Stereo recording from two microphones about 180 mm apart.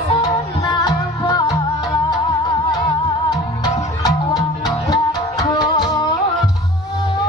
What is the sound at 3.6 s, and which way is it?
Music, 20° left (ahead or behind).